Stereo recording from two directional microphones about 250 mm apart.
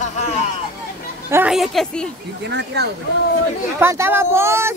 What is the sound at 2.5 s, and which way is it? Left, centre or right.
Speech, right.